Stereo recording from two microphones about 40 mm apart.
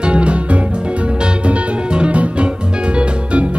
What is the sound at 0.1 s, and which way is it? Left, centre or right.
Music, right.